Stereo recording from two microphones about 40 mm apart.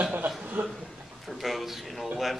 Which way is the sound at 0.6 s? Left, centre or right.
Right.